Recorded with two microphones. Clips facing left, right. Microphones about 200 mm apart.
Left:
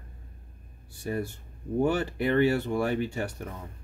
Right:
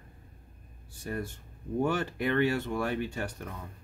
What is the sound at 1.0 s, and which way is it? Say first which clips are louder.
Speech: left 4 dB; 10° left (ahead or behind).